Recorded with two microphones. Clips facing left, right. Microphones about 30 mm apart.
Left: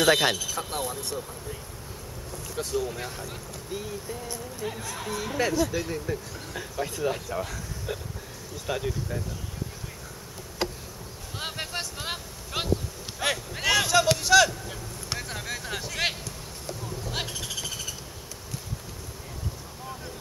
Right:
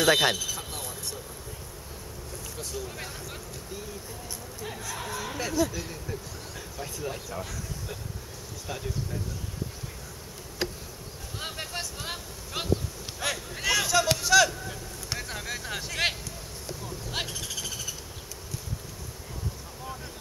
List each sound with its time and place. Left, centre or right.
0.0 s speech: centre
0.6 s speech: left
2.5 s speech: left
2.9 s speech: centre
3.7 s speech: left
4.3 s speech: centre
5.7 s speech: centre
11.3 s vehicle: centre
14.0 s a sound: centre